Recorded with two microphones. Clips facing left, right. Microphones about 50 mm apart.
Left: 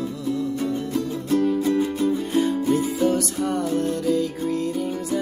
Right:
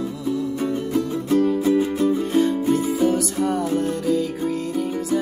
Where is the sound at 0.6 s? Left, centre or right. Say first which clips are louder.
Right 2 dB; centre.